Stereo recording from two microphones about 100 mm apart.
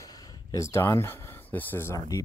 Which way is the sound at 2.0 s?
35° left (ahead or behind).